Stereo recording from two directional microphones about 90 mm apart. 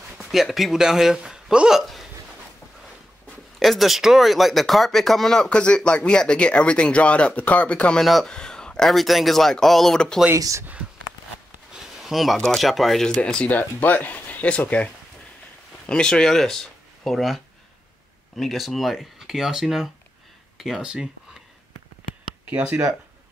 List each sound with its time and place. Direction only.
0.2 s speech: centre (ahead or behind)
3.5 s speech: centre (ahead or behind)
8.0 s a man's voice: centre (ahead or behind)
10.3 s speech: 35° right (ahead or behind)
11.7 s a sound: 5° right (ahead or behind)
12.4 s speech: 5° left (ahead or behind)
15.9 s a man's voice: 10° left (ahead or behind); by 21.4 s 10° right (ahead or behind)
22.5 s speech: 15° right (ahead or behind)